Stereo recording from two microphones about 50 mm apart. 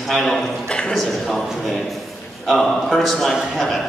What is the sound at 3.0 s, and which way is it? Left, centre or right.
Speech, centre.